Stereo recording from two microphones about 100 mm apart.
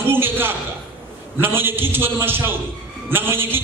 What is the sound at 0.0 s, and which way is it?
A man's voice, 20° right (ahead or behind).